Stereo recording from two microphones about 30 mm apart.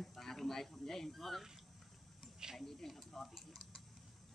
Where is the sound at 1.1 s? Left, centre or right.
Centre.